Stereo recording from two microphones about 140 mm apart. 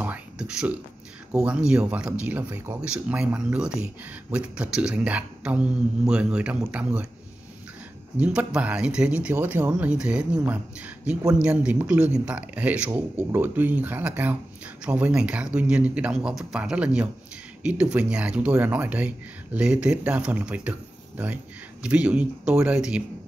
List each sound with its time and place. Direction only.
0.0 s a sound: 10° right (ahead or behind)
1.3 s speech: 5° right (ahead or behind)
8.2 s speech: 10° right (ahead or behind)
21.8 s speech: 10° right (ahead or behind)